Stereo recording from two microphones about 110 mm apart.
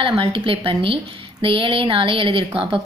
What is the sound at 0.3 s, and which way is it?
A woman's voice, 55° right (ahead or behind).